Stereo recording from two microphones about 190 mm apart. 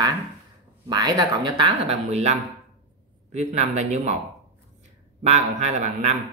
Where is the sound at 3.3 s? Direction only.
35° right (ahead or behind).